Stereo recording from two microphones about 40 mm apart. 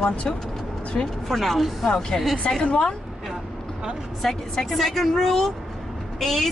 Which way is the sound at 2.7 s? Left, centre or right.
Left.